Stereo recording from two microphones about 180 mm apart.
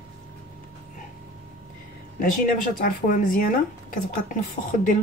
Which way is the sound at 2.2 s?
50° left (ahead or behind).